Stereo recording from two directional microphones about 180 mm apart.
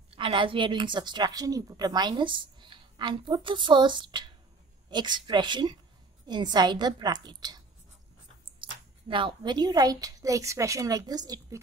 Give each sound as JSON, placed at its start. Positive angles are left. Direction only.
{"t": 0.1, "sound": "a woman's voice", "side_deg": -30}
{"t": 8.6, "sound": "a sound", "side_deg": -25}
{"t": 9.1, "sound": "a woman's voice", "side_deg": -25}